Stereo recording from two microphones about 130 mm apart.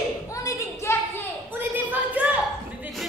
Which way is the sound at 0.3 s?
25° left (ahead or behind).